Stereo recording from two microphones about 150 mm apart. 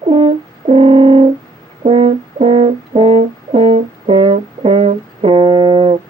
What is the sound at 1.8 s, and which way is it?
Brass instrument, 40° right (ahead or behind).